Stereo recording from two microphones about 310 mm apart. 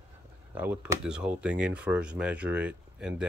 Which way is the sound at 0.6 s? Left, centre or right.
Centre.